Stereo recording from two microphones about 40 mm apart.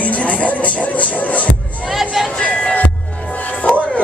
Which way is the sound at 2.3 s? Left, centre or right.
Left.